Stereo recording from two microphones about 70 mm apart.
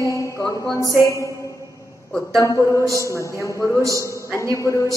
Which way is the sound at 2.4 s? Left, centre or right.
Left.